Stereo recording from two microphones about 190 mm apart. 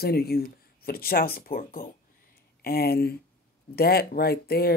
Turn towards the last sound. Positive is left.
turn(degrees=55)  # may be behind; listen again after turning